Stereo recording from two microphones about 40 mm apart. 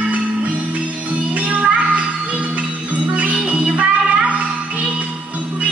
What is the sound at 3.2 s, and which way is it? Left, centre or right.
Music, right.